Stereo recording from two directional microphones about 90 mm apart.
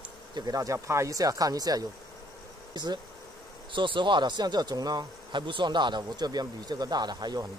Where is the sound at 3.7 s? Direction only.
65° right (ahead or behind).